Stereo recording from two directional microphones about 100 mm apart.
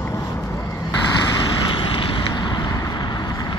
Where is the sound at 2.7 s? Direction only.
35° left (ahead or behind).